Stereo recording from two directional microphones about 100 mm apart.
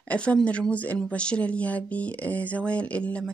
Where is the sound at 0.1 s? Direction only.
10° left (ahead or behind).